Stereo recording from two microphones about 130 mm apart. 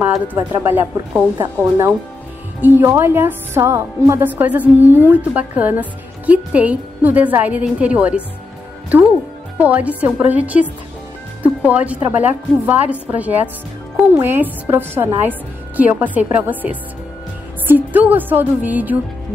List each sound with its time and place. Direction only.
0.7 s a woman's voice: 15° right (ahead or behind)
9.6 s a woman's voice: 10° right (ahead or behind)